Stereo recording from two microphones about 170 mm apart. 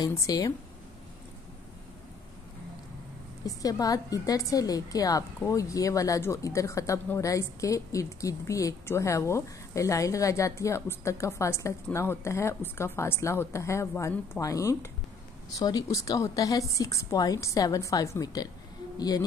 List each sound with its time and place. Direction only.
0.0 s a woman's voice: 20° left (ahead or behind)
3.4 s a woman's voice: 20° left (ahead or behind)